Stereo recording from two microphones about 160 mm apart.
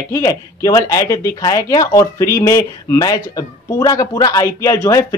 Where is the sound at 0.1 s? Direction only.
20° left (ahead or behind).